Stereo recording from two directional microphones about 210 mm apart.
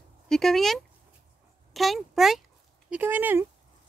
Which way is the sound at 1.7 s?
Centre (ahead or behind).